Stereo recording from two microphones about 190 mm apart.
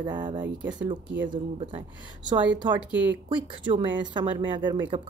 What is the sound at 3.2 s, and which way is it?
Speech, 25° right (ahead or behind).